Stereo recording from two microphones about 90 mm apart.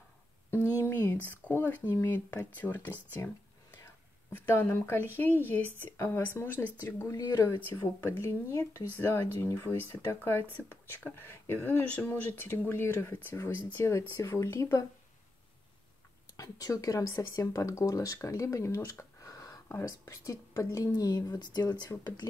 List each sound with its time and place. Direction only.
0.7 s a sound: 30° left (ahead or behind)
1.1 s speech: 20° left (ahead or behind)
4.3 s speech: 25° left (ahead or behind)
16.3 s speech: 40° left (ahead or behind)
20.9 s speech: 50° left (ahead or behind)